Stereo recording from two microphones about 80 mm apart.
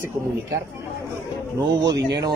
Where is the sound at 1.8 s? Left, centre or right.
Right.